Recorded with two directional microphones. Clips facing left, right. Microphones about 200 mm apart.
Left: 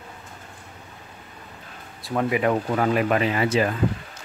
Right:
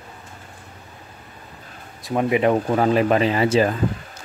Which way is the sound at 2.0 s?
20° right (ahead or behind).